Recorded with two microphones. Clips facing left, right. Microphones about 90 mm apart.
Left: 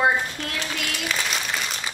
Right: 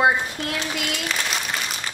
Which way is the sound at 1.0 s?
Centre (ahead or behind).